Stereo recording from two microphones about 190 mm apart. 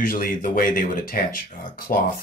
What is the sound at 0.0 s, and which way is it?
Speech, 50° left (ahead or behind).